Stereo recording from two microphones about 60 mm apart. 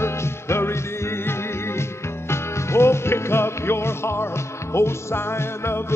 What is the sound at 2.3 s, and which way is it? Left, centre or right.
Music, left.